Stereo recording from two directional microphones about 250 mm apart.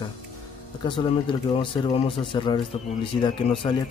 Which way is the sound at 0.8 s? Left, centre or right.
Centre.